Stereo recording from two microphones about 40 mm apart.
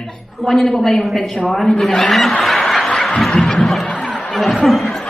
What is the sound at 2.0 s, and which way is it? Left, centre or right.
Speech, centre.